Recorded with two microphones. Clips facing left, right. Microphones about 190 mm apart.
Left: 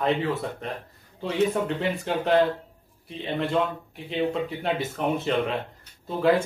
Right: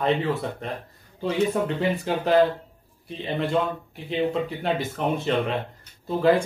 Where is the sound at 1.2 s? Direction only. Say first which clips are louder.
Right 1 dB; centre (ahead or behind).